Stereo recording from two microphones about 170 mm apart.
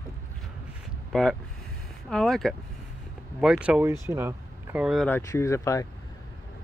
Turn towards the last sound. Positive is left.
turn(degrees=20)  # may be behind; listen again after turning